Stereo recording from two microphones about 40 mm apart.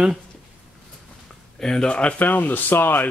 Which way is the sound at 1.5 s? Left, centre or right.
Centre.